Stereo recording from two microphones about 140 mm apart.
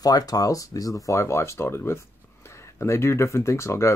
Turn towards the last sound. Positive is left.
turn(degrees=20)  # may be behind; listen again after turning